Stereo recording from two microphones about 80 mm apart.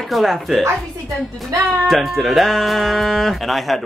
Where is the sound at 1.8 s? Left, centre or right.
Centre.